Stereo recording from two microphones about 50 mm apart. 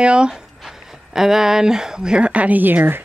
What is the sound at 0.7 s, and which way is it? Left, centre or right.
Speech, centre.